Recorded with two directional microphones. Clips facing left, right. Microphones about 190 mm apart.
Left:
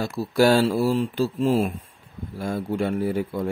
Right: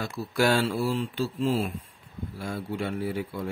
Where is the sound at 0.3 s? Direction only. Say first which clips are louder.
Left 6 dB; 35° left (ahead or behind).